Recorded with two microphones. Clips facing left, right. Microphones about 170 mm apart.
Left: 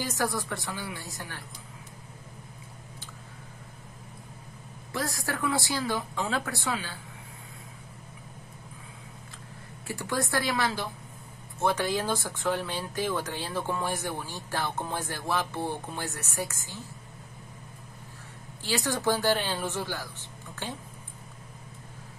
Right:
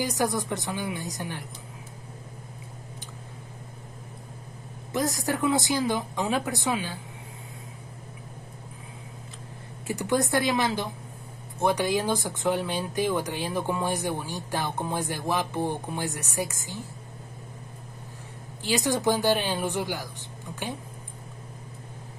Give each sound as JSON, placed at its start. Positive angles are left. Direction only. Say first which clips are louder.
{"t": 0.0, "sound": "speech", "louder": "right 4 dB", "side_deg": -15}
{"t": 4.9, "sound": "speech", "louder": "right 5 dB", "side_deg": -20}
{"t": 9.8, "sound": "speech", "louder": "right 6 dB", "side_deg": -20}
{"t": 18.6, "sound": "speech", "louder": "right 4 dB", "side_deg": -15}